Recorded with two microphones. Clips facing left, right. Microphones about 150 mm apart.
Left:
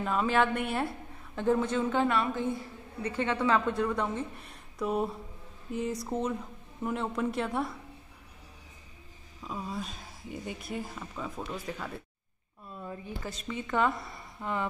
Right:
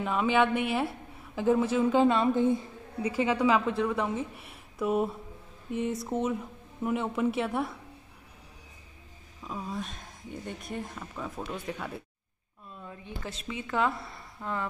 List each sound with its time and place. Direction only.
0.0 s speech: centre (ahead or behind)
2.0 s a woman's voice: 20° right (ahead or behind)
3.0 s speech: 10° right (ahead or behind)
9.4 s speech: centre (ahead or behind)